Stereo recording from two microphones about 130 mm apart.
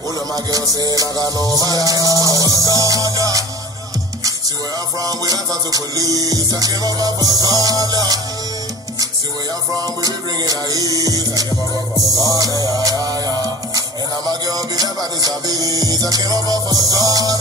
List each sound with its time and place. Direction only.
0.5 s music: 30° right (ahead or behind)
5.0 s music: 30° right (ahead or behind)
9.8 s music: 30° right (ahead or behind)
13.4 s music: 30° right (ahead or behind)